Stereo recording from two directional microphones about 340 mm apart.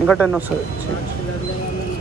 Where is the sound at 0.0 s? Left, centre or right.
Centre.